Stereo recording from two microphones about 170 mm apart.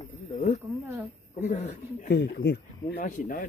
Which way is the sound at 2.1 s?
75° left (ahead or behind).